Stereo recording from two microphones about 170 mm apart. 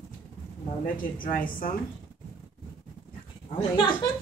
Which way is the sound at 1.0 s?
55° left (ahead or behind).